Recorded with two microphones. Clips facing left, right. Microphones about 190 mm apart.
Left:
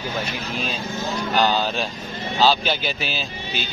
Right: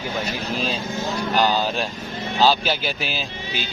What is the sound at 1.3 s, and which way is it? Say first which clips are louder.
Speech: even; 10° right (ahead or behind).